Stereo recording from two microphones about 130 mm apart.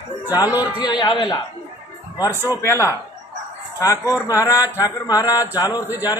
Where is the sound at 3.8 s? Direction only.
25° left (ahead or behind).